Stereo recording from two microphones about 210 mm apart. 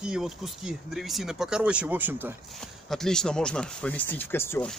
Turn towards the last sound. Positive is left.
turn(degrees=10)  # may be behind; listen again after turning